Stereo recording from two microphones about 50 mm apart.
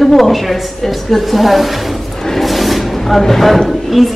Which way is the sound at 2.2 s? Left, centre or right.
Centre.